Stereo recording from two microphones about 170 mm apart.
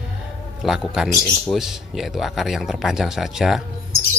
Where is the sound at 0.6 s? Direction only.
Centre (ahead or behind).